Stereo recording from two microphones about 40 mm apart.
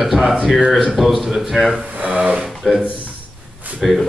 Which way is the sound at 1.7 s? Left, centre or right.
Right.